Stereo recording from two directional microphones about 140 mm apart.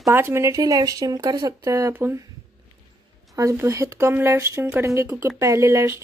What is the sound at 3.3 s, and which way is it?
Speech, 20° right (ahead or behind).